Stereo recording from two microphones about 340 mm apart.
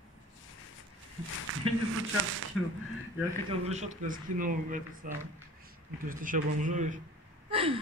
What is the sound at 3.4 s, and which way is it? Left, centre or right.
Speech, centre.